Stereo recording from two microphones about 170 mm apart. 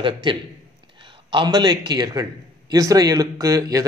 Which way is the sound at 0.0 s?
30° right (ahead or behind).